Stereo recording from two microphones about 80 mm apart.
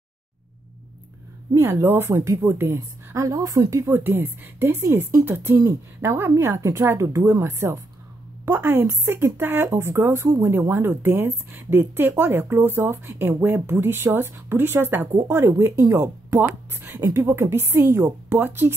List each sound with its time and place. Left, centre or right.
1.6 s a woman's voice: right
3.2 s a woman's voice: right
3.8 s speech: right